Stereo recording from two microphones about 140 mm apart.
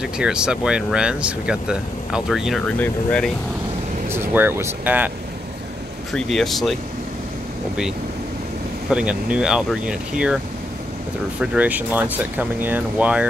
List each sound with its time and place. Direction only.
0.0 s speech: 5° right (ahead or behind)
2.6 s speech: 10° left (ahead or behind)
4.1 s speech: 15° right (ahead or behind)
6.1 s speech: centre (ahead or behind)
8.9 s speech: 5° right (ahead or behind)
11.5 s speech: 10° right (ahead or behind)